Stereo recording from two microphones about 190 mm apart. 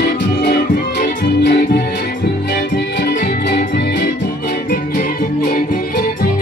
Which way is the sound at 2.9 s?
60° left (ahead or behind).